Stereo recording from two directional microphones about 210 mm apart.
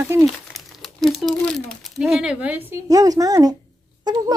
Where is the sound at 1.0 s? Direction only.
Centre (ahead or behind).